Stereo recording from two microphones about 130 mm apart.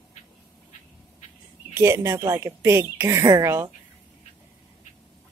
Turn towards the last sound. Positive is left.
turn(degrees=-25)  # may be behind; listen again after turning